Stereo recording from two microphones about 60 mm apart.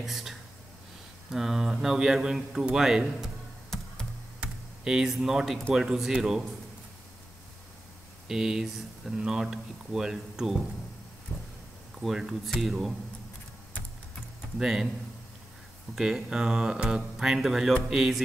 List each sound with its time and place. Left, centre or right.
0.0 s speech: centre
4.4 s computer keyboard: centre
5.7 s speech: centre
8.3 s speech: centre
11.3 s vehicle: left
12.0 s speech: centre
14.6 s speech: centre
15.9 s speech: centre